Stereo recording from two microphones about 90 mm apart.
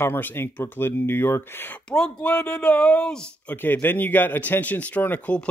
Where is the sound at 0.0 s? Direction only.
25° left (ahead or behind).